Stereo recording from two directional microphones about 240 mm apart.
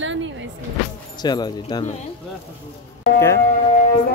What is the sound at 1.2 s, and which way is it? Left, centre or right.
Speech, centre.